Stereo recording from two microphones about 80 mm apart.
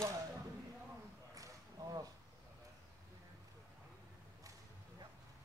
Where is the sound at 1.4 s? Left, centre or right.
Right.